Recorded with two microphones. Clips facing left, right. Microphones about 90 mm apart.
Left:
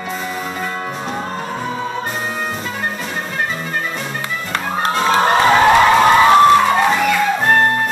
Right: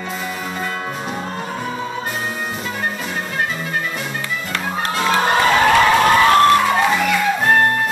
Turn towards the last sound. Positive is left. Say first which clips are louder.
# left 2 dB
turn(degrees=10)  # may be behind; listen again after turning